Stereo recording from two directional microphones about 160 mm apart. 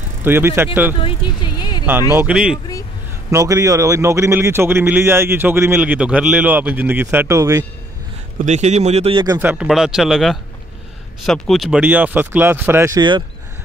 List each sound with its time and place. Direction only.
0.2 s speech: 15° right (ahead or behind)
1.0 s vehicle: 30° left (ahead or behind)
2.1 s speech: 5° right (ahead or behind)
3.3 s speech: 20° right (ahead or behind)
8.5 s speech: 45° right (ahead or behind)
9.4 s speech: 10° right (ahead or behind)